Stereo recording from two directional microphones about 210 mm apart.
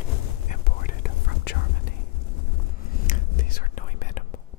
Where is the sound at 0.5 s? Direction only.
40° left (ahead or behind).